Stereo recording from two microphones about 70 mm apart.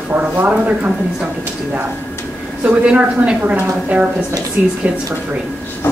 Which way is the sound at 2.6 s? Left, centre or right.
Centre.